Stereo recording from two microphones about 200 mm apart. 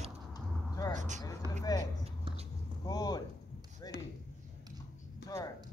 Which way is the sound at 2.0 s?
30° right (ahead or behind).